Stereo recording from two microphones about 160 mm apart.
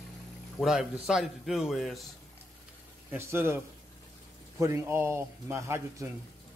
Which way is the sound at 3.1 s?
15° right (ahead or behind).